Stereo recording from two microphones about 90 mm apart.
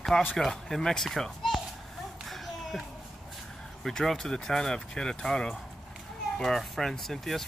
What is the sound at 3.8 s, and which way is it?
Speech, 5° left (ahead or behind).